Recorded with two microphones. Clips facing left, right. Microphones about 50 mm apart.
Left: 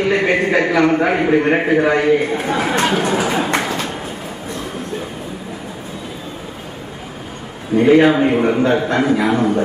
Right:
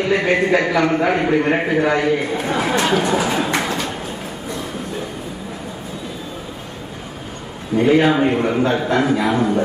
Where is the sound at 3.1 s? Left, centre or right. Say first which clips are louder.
Left 1 dB; left.